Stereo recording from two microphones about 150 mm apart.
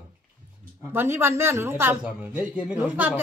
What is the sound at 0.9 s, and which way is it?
Speech, 15° right (ahead or behind).